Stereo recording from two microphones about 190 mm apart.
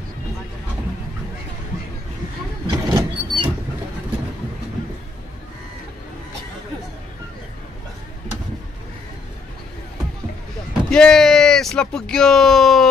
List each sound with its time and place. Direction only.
2.6 s vehicle: 25° right (ahead or behind)
10.9 s speech: 5° left (ahead or behind)